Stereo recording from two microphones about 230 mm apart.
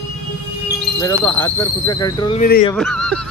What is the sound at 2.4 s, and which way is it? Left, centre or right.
Speech, left.